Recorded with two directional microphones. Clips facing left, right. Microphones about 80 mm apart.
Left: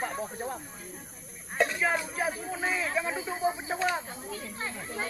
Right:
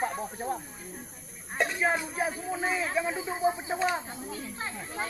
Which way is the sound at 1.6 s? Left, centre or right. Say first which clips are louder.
Even; centre.